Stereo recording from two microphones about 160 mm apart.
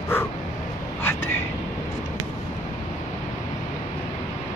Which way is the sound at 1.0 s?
15° left (ahead or behind).